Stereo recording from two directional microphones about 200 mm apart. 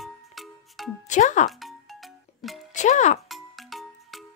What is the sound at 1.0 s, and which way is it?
Speech, 35° left (ahead or behind).